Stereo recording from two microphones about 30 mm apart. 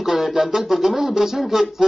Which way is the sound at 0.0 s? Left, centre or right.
Centre.